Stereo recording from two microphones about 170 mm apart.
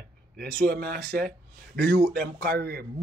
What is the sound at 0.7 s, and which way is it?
Speech, 65° right (ahead or behind).